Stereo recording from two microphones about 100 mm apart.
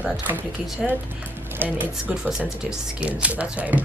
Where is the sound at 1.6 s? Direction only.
15° right (ahead or behind).